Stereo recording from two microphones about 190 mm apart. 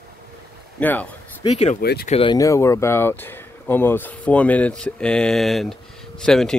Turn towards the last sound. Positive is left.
turn(degrees=5)  # may be behind; listen again after turning